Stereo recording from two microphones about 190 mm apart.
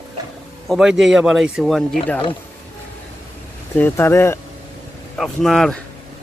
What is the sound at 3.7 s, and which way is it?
Speech, 10° left (ahead or behind).